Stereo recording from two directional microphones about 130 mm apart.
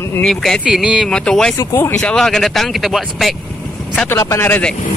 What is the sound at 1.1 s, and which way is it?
Speech, 5° left (ahead or behind).